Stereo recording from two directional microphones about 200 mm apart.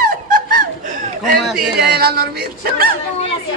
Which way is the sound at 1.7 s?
50° right (ahead or behind).